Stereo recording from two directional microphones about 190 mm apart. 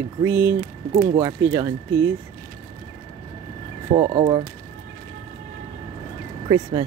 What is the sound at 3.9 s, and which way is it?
Speech, 30° right (ahead or behind).